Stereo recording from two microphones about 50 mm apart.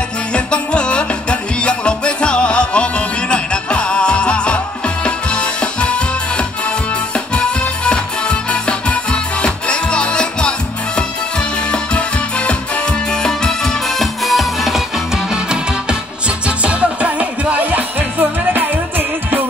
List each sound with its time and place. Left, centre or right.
0.3 s music: centre
13.9 s music: centre
16.4 s music: right